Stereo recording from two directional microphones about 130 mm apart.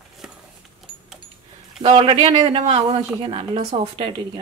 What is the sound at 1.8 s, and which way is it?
A woman's voice, 45° right (ahead or behind).